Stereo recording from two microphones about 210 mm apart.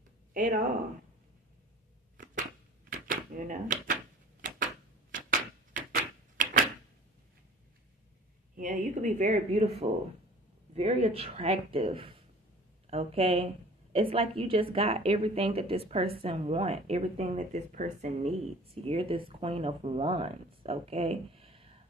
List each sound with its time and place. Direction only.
0.3 s speech: 40° right (ahead or behind)
3.1 s typewriter: 40° right (ahead or behind)
5.7 s door: 40° right (ahead or behind)
8.5 s a woman's voice: 35° right (ahead or behind)